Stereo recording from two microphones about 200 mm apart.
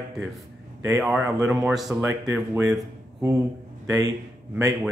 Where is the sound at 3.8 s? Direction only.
15° right (ahead or behind).